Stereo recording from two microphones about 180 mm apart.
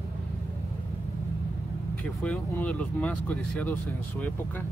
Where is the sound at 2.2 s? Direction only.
5° left (ahead or behind).